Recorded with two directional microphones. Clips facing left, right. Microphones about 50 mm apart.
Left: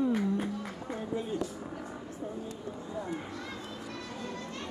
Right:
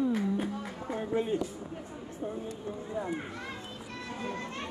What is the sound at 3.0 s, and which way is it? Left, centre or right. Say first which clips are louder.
Children playing: right 3 dB; right.